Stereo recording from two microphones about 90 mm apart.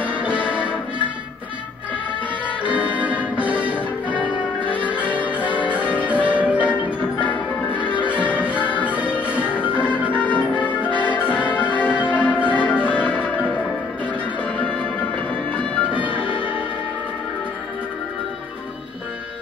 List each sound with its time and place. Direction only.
0.0 s music: 15° right (ahead or behind)
0.4 s music: 15° left (ahead or behind)
2.9 s music: 15° right (ahead or behind)
3.5 s music: 15° left (ahead or behind)
8.8 s music: 15° right (ahead or behind)
9.4 s music: 20° left (ahead or behind)
12.4 s change ringing: 15° left (ahead or behind)
14.6 s music: 15° left (ahead or behind)